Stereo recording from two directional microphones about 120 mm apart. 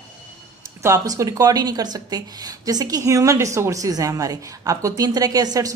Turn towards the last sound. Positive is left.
turn(degrees=-30)  # may be behind; listen again after turning